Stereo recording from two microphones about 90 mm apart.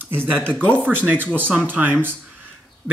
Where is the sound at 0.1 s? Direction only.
25° right (ahead or behind).